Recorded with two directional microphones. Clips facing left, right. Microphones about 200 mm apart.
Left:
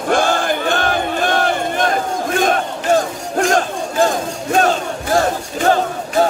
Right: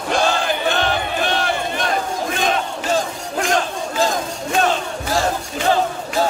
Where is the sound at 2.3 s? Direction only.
50° left (ahead or behind).